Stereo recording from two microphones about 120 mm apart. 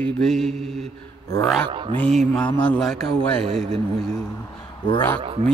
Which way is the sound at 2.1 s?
Centre (ahead or behind).